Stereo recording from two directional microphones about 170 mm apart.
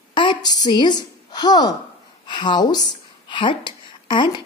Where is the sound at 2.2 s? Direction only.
25° left (ahead or behind).